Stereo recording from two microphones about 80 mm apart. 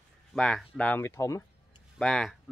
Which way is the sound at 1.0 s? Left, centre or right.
Left.